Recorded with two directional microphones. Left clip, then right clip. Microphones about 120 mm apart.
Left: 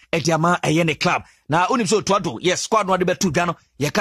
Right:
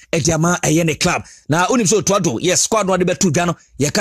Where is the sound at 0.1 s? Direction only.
30° right (ahead or behind).